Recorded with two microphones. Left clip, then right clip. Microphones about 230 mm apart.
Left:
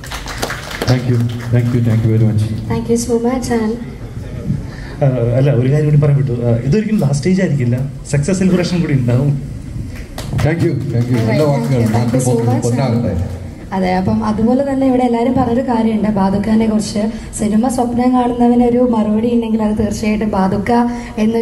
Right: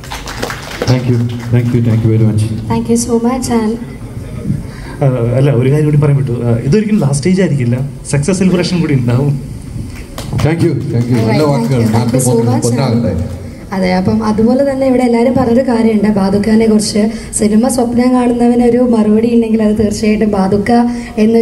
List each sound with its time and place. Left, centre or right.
1.5 s a woman's voice: right
5.0 s a woman's voice: right
10.4 s a woman's voice: right